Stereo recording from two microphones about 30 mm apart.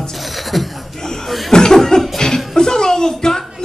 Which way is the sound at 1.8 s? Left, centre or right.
Centre.